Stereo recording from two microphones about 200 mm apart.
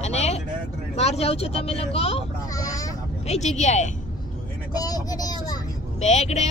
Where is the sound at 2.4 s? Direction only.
15° left (ahead or behind).